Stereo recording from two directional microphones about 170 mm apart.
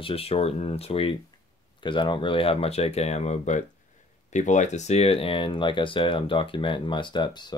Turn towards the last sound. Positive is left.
turn(degrees=25)  # may be behind; listen again after turning